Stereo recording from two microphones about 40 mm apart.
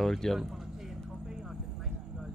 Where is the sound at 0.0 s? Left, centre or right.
Centre.